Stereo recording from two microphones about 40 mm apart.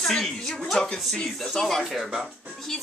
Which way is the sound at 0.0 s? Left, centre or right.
Centre.